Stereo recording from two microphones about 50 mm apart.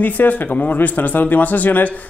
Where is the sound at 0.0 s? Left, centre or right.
Left.